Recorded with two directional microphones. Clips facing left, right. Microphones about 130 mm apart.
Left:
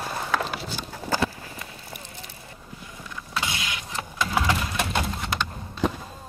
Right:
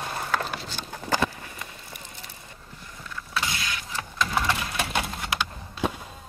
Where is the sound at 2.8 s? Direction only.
20° left (ahead or behind).